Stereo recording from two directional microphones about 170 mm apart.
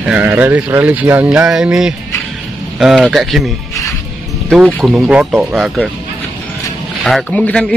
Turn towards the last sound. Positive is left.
turn(degrees=5)  # may be behind; listen again after turning